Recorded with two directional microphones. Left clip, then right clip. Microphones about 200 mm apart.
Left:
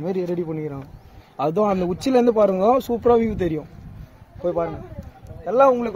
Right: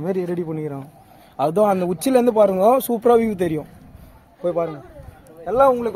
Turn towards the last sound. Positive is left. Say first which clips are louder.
# even
turn(degrees=-15)  # may be behind; listen again after turning